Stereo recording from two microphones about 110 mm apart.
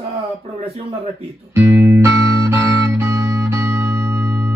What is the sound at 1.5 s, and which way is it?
Music, 25° right (ahead or behind).